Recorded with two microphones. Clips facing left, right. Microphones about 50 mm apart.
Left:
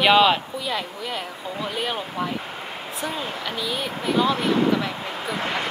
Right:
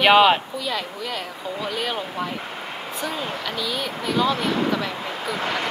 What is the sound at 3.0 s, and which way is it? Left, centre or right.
Speech, centre.